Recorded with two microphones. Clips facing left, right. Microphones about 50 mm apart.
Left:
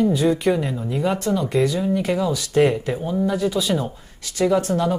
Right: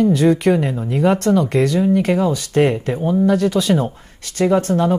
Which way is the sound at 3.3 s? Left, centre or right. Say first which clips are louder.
Right 5 dB; right.